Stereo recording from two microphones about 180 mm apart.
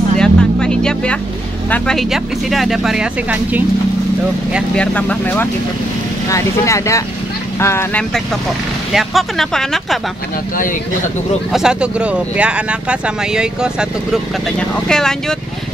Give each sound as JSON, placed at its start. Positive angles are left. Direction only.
{"t": 0.2, "sound": "vehicle", "side_deg": 5}
{"t": 1.7, "sound": "speech", "side_deg": 5}
{"t": 4.7, "sound": "speech", "side_deg": 10}
{"t": 8.9, "sound": "speech", "side_deg": 0}
{"t": 11.5, "sound": "speech", "side_deg": -5}